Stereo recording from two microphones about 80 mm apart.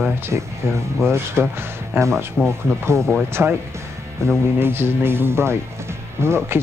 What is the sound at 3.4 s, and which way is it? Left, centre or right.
Speech, right.